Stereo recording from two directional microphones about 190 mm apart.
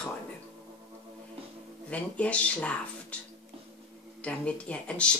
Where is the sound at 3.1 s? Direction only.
5° left (ahead or behind).